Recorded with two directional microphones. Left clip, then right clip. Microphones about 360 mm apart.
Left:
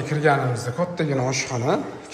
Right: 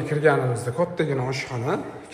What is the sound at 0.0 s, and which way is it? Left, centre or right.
A man's voice, centre.